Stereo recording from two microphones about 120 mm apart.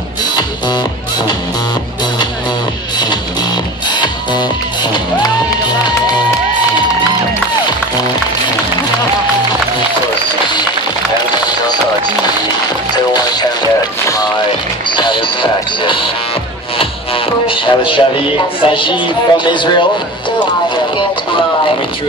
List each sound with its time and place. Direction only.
0.2 s music: 35° left (ahead or behind)
3.9 s music: 40° left (ahead or behind)
12.9 s music: 35° left (ahead or behind)
15.0 s music: 40° left (ahead or behind)
18.7 s speech: 45° left (ahead or behind)